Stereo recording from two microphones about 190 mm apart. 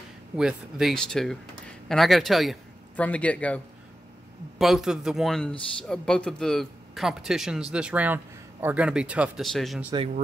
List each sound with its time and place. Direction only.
0.4 s speech: 5° right (ahead or behind)
9.9 s speech: 35° right (ahead or behind)